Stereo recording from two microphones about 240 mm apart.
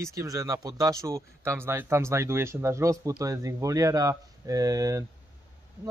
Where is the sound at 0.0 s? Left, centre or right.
Centre.